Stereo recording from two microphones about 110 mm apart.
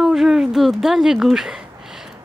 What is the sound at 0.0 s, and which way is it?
Speech, 5° right (ahead or behind).